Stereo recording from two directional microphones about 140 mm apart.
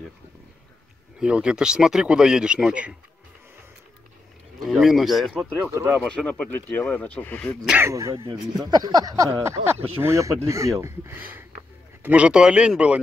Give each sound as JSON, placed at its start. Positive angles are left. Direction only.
{"t": 1.2, "sound": "speech", "side_deg": -5}
{"t": 4.6, "sound": "speech", "side_deg": 0}
{"t": 5.8, "sound": "a sound", "side_deg": -20}
{"t": 6.0, "sound": "speech", "side_deg": 10}
{"t": 7.8, "sound": "a sound", "side_deg": -20}
{"t": 11.1, "sound": "speech", "side_deg": -15}